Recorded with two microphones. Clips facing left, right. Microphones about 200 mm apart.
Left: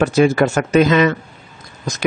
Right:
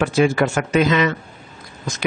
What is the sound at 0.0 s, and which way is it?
Speech, 40° left (ahead or behind).